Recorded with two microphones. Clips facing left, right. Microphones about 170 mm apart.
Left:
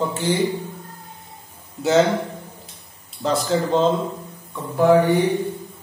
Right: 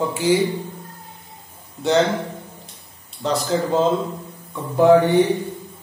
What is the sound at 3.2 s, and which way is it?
Speech, centre (ahead or behind).